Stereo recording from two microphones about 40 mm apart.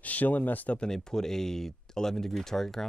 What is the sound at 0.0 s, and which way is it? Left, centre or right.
Speech, left.